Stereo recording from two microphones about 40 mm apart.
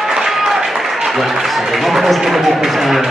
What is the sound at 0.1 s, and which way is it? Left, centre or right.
Run, centre.